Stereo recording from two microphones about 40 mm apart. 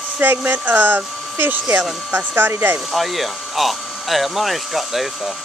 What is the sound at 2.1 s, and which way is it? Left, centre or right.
Speech, right.